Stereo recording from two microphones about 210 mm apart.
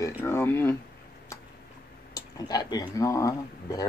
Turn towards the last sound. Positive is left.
turn(degrees=15)  # may be behind; listen again after turning